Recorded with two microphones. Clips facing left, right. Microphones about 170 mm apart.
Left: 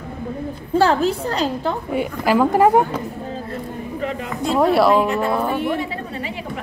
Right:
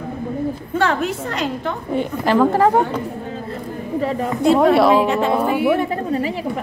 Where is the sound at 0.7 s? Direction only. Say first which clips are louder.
Left 4 dB; 35° left (ahead or behind).